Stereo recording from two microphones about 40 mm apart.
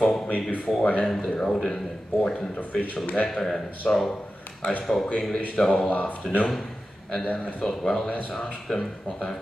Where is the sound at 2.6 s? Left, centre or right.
Left.